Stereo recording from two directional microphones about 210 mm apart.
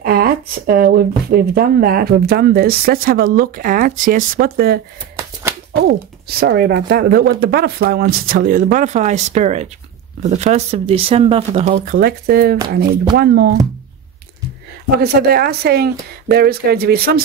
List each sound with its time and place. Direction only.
0.0 s speech: 45° right (ahead or behind)
5.8 s speech: 50° right (ahead or behind)
15.0 s speech: 50° right (ahead or behind)